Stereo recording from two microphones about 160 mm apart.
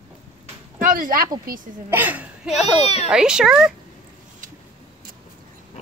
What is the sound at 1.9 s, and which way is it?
Speech, 10° right (ahead or behind).